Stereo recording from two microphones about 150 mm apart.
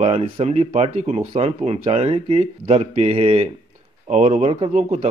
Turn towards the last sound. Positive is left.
turn(degrees=-45)  # may be behind; listen again after turning